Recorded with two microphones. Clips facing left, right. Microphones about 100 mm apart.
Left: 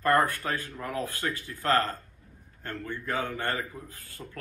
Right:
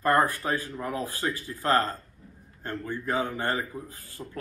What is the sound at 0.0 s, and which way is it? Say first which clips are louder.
A man's voice: right 1 dB; 20° right (ahead or behind).